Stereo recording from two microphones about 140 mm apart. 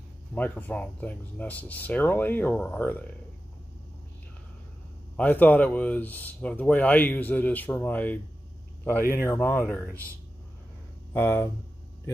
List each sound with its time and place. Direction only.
0.3 s speech: 10° left (ahead or behind)
5.1 s speech: 10° left (ahead or behind)
11.1 s speech: 15° left (ahead or behind)